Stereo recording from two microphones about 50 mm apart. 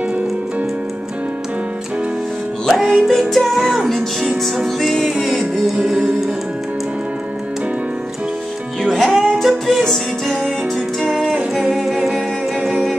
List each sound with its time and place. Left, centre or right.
2.7 s music: centre
3.5 s music: centre
5.8 s music: centre
8.9 s music: centre